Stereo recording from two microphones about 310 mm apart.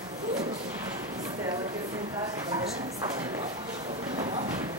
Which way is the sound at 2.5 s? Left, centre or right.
Centre.